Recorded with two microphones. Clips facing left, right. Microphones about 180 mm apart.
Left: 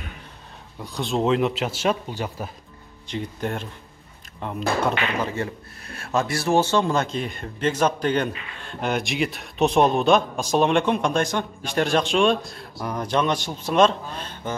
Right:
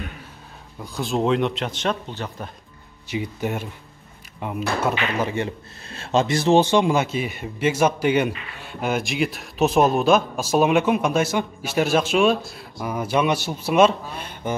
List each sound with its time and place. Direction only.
0.7 s speech: centre (ahead or behind)
3.1 s speech: 10° right (ahead or behind)
5.3 s speech: 20° right (ahead or behind)